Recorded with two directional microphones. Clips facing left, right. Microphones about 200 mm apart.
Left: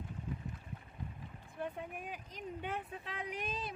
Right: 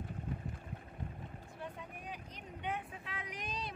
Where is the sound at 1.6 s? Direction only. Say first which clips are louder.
Left 6 dB; 50° left (ahead or behind).